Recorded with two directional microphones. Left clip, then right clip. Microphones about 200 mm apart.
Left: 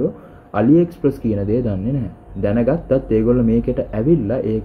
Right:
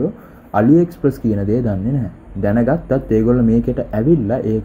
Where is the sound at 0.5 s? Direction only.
25° right (ahead or behind).